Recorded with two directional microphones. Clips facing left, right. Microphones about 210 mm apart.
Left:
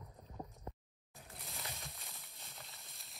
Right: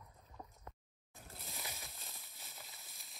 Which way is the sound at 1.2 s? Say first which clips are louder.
Even; centre (ahead or behind).